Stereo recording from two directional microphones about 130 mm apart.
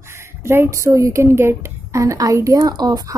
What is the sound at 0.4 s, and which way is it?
Speech, 20° right (ahead or behind).